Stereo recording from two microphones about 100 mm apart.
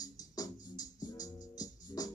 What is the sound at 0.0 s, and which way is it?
Music, 35° left (ahead or behind).